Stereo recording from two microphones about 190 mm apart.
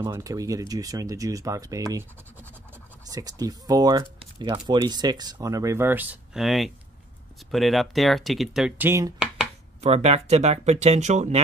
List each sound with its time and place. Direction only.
0.0 s speech: 15° right (ahead or behind)
3.1 s speech: 20° right (ahead or behind)
9.8 s speech: 35° right (ahead or behind)